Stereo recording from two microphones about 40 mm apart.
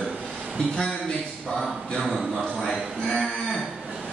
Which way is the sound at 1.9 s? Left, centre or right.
Centre.